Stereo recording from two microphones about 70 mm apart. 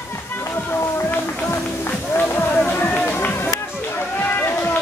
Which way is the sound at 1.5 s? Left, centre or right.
Left.